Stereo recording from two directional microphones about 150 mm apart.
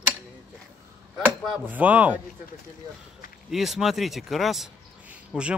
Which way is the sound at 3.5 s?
Centre (ahead or behind).